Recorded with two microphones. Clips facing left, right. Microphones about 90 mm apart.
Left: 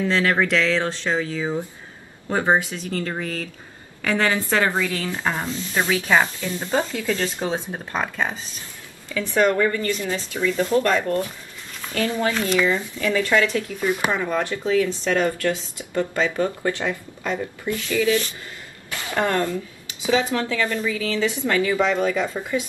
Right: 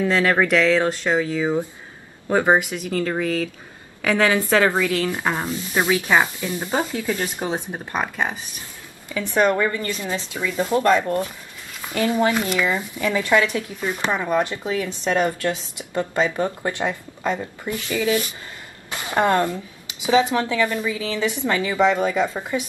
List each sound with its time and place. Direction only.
0.0 s speech: 10° right (ahead or behind)
2.2 s speech: 15° right (ahead or behind)
4.0 s speech: 10° right (ahead or behind)